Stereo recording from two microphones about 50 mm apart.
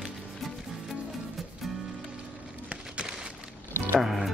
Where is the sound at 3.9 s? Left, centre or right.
Centre.